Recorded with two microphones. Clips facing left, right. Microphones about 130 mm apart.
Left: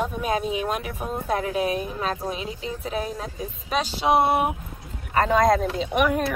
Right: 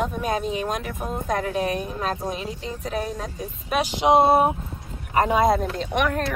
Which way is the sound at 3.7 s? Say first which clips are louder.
Right 3 dB; 15° right (ahead or behind).